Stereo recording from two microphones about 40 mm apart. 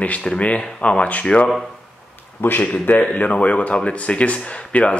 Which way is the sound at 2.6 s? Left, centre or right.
Left.